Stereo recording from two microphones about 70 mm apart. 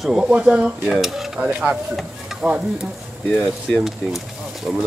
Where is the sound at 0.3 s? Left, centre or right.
Centre.